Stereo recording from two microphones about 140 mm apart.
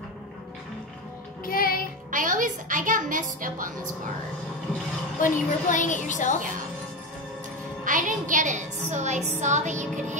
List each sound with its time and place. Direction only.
1.4 s music: 90° left
2.0 s a woman's voice: 70° right (ahead or behind)
5.2 s a woman's voice: 65° left (ahead or behind)
7.8 s a woman's voice: 70° right (ahead or behind)